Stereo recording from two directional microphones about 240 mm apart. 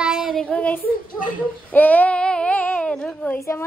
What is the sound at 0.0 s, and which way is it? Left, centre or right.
Child singing, centre.